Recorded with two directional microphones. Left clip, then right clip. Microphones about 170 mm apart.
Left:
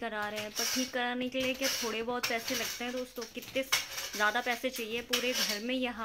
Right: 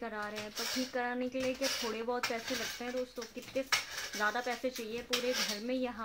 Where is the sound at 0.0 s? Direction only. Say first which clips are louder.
Left 4 dB; 10° left (ahead or behind).